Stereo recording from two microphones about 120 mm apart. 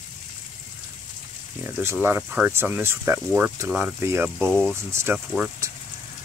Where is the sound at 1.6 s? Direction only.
20° right (ahead or behind).